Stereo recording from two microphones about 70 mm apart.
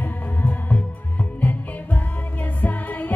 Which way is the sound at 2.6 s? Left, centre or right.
Left.